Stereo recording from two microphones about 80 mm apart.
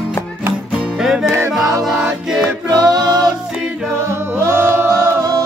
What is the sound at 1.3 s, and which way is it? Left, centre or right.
Music, right.